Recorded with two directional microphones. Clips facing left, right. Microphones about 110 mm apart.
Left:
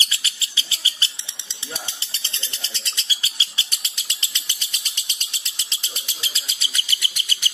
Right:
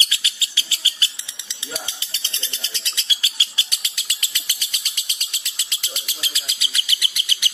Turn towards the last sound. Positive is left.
turn(degrees=35)  # may be behind; listen again after turning